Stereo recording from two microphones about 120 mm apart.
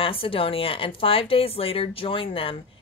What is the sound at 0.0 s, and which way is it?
A woman's voice, 50° left (ahead or behind).